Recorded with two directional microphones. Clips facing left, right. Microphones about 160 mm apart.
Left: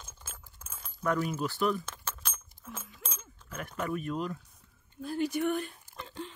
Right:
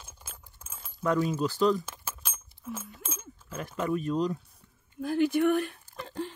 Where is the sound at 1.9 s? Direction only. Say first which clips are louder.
Even; 10° right (ahead or behind).